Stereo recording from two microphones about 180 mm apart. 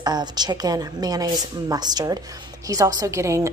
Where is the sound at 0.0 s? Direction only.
25° right (ahead or behind).